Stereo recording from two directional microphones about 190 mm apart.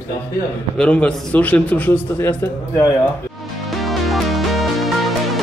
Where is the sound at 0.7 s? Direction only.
5° left (ahead or behind).